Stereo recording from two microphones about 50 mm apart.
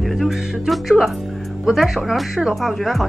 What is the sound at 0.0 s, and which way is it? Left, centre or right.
Speech, centre.